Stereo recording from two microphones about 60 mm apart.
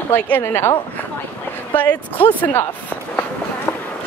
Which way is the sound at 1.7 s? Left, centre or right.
Left.